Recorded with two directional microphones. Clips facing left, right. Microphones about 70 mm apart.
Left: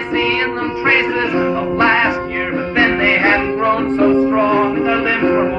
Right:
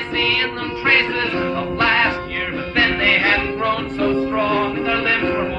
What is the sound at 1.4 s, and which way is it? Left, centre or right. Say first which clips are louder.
Music: left 6 dB; centre.